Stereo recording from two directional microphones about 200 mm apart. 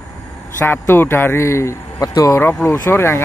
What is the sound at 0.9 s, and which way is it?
Speech, 10° left (ahead or behind).